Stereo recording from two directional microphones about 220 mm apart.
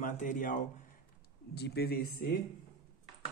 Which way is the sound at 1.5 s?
50° left (ahead or behind).